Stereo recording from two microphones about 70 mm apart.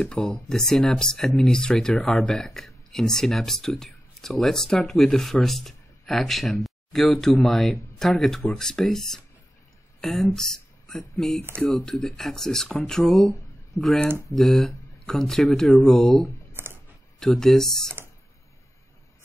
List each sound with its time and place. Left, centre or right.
0.0 s speech: centre
14.3 s speech: centre
16.5 s a sound: right
17.2 s speech: centre